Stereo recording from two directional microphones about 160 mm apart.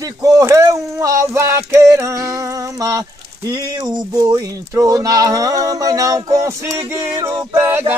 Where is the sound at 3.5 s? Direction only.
25° right (ahead or behind).